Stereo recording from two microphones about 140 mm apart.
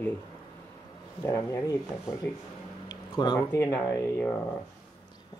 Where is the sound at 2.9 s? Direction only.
30° left (ahead or behind).